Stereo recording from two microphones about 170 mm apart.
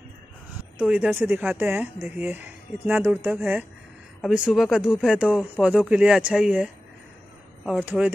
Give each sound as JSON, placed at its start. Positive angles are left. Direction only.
{"t": 0.7, "sound": "speech", "side_deg": -5}
{"t": 4.2, "sound": "speech", "side_deg": 0}